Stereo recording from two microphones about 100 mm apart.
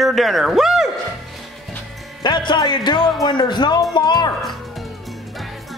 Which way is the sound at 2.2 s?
50° left (ahead or behind).